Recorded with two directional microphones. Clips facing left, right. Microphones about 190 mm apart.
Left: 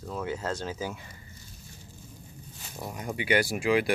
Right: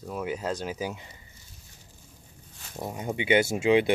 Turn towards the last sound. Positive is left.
turn(degrees=-25)  # may be behind; listen again after turning